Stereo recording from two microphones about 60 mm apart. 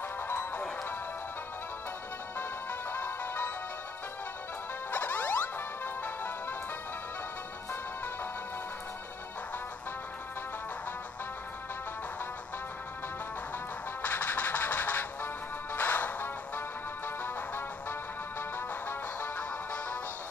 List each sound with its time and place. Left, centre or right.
0.3 s music: left
2.3 s music: left
4.9 s music: left
14.0 s music: left